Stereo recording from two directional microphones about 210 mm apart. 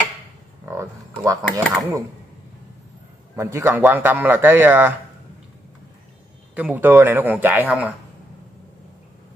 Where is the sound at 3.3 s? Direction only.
15° right (ahead or behind).